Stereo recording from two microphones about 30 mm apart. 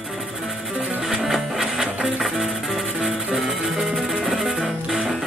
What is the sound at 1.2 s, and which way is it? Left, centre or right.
Music, centre.